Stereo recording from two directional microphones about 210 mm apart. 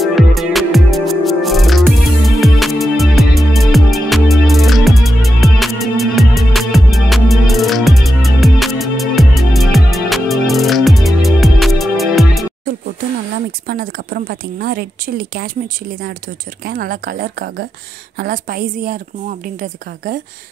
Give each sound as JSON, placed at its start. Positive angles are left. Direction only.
{"t": 0.0, "sound": "music", "side_deg": 0}
{"t": 13.7, "sound": "a woman's voice", "side_deg": -45}
{"t": 16.6, "sound": "a woman's voice", "side_deg": -45}